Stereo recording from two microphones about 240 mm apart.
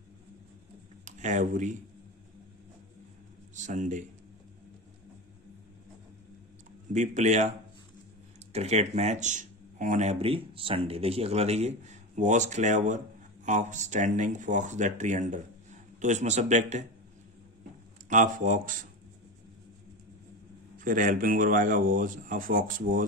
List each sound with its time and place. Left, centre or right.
1.0 s speech: right
3.5 s a man's voice: right
6.9 s speech: right
8.5 s speech: right
18.1 s speech: right
20.7 s speech: right